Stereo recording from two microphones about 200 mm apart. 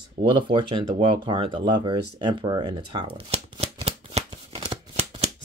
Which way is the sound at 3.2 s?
30° right (ahead or behind).